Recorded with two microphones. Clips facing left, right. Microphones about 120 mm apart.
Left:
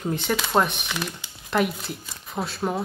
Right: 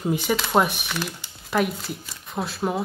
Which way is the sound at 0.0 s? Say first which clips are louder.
Right 2 dB; 5° right (ahead or behind).